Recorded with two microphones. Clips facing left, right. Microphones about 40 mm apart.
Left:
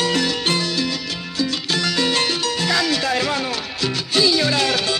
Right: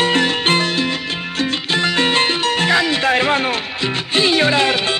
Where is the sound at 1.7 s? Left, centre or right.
Right.